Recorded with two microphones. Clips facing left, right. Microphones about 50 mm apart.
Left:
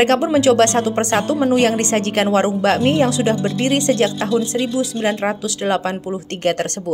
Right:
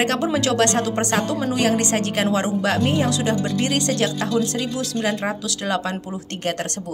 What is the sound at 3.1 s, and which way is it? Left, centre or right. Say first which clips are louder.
A woman's voice: left 4 dB; left.